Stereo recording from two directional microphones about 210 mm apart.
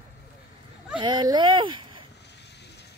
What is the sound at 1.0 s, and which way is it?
Speech, 20° right (ahead or behind).